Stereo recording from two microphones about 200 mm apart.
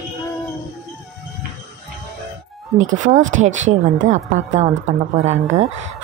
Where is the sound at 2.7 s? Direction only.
40° right (ahead or behind).